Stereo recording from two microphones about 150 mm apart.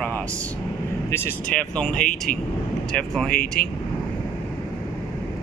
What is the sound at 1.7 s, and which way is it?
Speech, 5° left (ahead or behind).